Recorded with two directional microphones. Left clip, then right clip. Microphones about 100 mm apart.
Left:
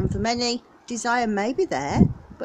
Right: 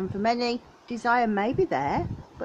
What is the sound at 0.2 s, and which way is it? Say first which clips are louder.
A woman's voice: even; 15° left (ahead or behind).